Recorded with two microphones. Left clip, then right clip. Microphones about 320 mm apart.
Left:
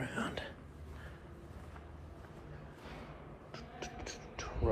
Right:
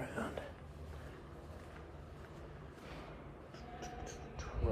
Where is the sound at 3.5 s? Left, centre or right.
Centre.